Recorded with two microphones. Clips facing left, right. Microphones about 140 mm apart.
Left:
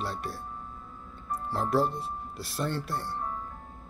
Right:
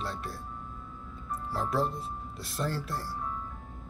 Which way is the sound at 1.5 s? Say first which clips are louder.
Left 3 dB; centre (ahead or behind).